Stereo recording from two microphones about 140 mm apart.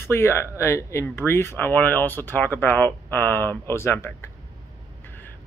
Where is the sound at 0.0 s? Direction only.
15° left (ahead or behind).